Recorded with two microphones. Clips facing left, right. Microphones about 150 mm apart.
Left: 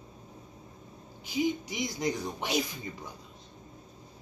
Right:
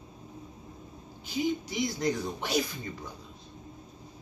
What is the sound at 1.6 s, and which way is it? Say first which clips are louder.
Speech: right 2 dB; 15° left (ahead or behind).